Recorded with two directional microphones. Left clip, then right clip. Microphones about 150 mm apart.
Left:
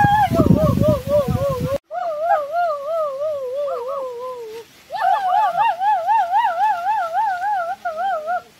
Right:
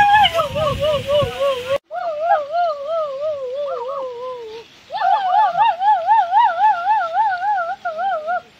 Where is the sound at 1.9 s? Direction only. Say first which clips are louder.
Even; 15° left (ahead or behind).